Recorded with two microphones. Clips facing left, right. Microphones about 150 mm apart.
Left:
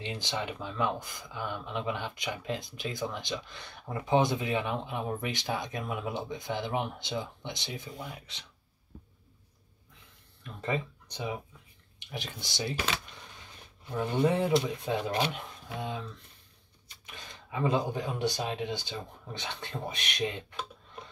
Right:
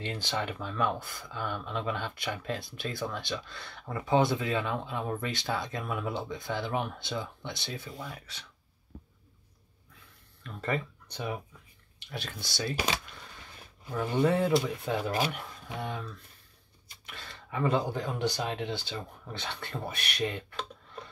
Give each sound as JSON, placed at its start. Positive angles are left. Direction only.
{"t": 0.0, "sound": "speech", "side_deg": 15}
{"t": 10.4, "sound": "speech", "side_deg": 15}
{"t": 13.9, "sound": "speech", "side_deg": 20}